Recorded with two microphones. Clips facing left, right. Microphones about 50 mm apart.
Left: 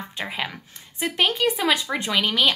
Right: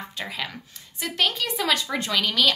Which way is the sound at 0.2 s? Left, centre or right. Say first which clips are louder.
Left 3 dB; left.